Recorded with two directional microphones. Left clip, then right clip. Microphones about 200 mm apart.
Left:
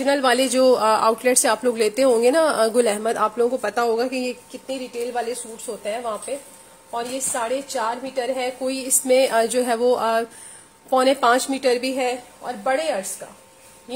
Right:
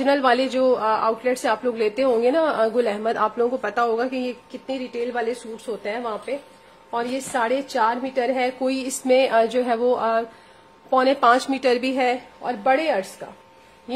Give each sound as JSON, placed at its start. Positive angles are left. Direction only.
{"t": 0.0, "sound": "a woman's voice", "side_deg": 0}
{"t": 0.3, "sound": "a woman's voice", "side_deg": 15}
{"t": 4.6, "sound": "a woman's voice", "side_deg": -20}
{"t": 9.0, "sound": "a woman's voice", "side_deg": -5}